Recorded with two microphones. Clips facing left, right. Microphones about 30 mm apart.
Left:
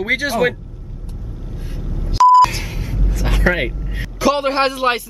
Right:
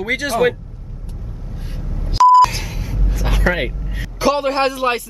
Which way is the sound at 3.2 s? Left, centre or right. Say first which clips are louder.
Even; left.